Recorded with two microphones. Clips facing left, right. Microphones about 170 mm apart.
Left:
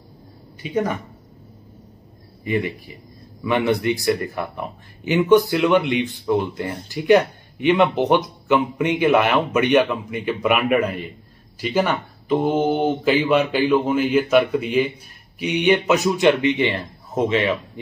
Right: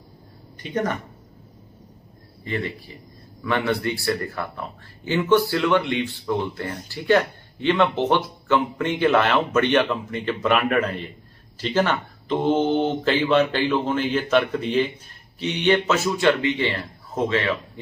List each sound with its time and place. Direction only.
0.6 s speech: 10° left (ahead or behind)
2.4 s speech: 15° left (ahead or behind)